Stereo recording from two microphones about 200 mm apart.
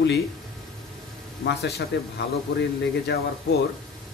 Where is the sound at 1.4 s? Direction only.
55° left (ahead or behind).